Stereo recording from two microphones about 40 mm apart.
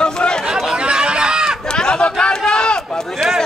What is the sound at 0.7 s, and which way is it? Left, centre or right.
Run, right.